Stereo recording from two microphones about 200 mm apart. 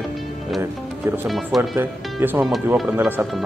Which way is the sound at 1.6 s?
10° right (ahead or behind).